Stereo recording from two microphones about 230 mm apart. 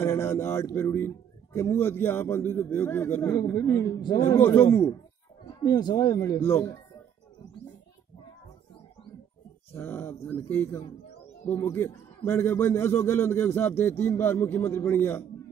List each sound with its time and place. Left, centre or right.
0.0 s speech: centre
9.8 s speech: centre